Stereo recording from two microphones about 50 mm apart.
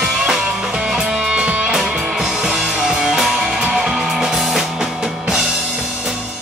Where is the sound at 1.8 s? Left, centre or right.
Centre.